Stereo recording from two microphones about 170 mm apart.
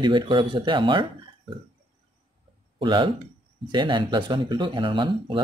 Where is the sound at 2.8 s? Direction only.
30° right (ahead or behind).